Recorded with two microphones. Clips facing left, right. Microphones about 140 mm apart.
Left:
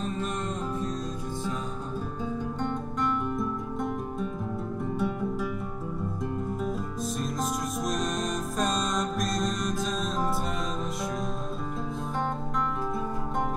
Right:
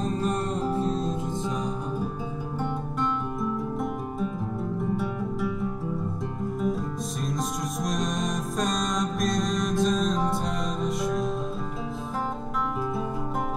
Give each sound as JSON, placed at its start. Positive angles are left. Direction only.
{"t": 0.2, "sound": "music", "side_deg": -30}
{"t": 3.3, "sound": "music", "side_deg": 0}
{"t": 7.8, "sound": "music", "side_deg": 0}